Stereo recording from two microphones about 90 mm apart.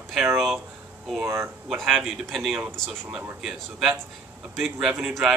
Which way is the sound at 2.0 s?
Centre (ahead or behind).